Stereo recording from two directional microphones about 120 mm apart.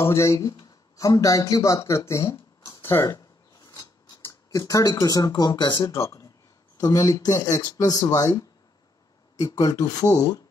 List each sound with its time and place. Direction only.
0.1 s speech: 25° left (ahead or behind)
5.8 s speech: 25° left (ahead or behind)